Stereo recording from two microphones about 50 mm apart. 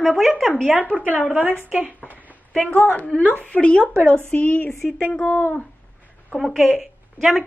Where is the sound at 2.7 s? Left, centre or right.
Left.